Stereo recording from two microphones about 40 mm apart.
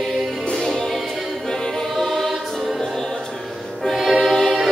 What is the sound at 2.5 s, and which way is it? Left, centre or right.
Music, centre.